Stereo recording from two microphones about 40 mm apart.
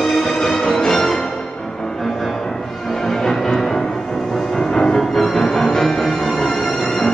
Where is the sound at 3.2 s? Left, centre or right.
Centre.